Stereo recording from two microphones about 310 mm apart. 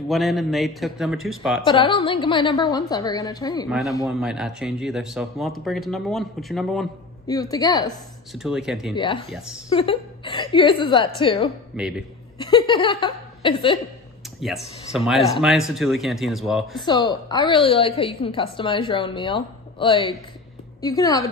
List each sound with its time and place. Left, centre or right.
0.1 s speech: centre
1.7 s a woman's voice: centre
4.1 s speech: centre
7.2 s a woman's voice: centre
8.3 s speech: centre
8.9 s a woman's voice: centre
11.7 s speech: centre
12.4 s a woman's voice: centre
14.4 s speech: centre
16.8 s a woman's voice: centre